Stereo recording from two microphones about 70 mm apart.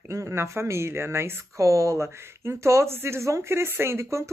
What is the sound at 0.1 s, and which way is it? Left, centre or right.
Speech, right.